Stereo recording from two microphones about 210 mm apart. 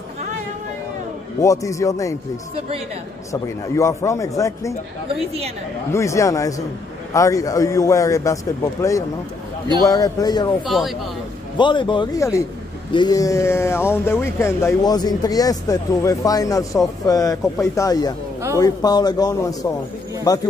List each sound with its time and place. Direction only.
1.4 s speech: 15° left (ahead or behind)
3.6 s speech: 15° left (ahead or behind)
5.9 s speech: 15° left (ahead or behind)
9.8 s speech: 15° left (ahead or behind)
10.7 s speech: centre (ahead or behind)
11.5 s a man's voice: 20° left (ahead or behind)